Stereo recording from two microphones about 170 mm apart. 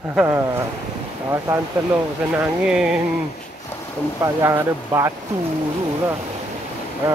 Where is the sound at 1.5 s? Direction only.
15° right (ahead or behind).